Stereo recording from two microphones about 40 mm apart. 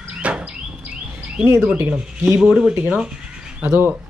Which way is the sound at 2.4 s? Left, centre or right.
Centre.